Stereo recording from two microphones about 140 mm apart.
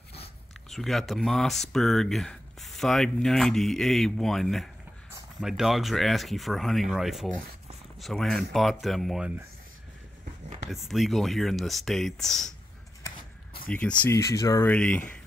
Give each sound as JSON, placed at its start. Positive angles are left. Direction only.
{"t": 0.7, "sound": "speech", "side_deg": 0}
{"t": 10.7, "sound": "speech", "side_deg": 0}
{"t": 13.7, "sound": "speech", "side_deg": 10}
{"t": 14.1, "sound": "speech", "side_deg": 20}
{"t": 14.7, "sound": "speech", "side_deg": 10}